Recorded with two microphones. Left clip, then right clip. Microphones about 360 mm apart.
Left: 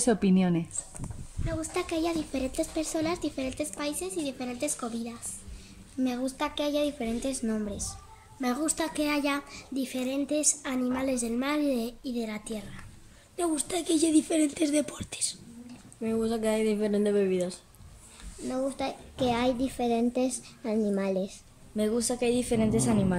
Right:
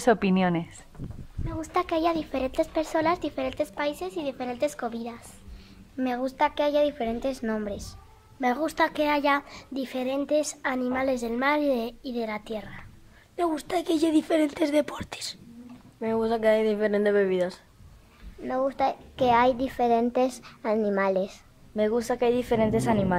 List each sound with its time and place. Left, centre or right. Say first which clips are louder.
0.0 s a woman's voice: right 4 dB; right
1.6 s a woman's voice: right 6 dB; right
6.0 s a woman's voice: right 6 dB; right